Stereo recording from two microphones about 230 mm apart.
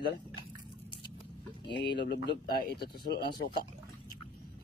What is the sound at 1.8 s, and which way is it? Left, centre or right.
Speech, left.